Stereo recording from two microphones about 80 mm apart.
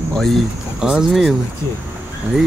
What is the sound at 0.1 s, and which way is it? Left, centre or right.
Speech, centre.